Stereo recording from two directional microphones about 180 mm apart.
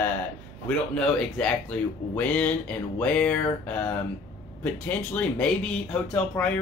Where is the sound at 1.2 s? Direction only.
5° left (ahead or behind).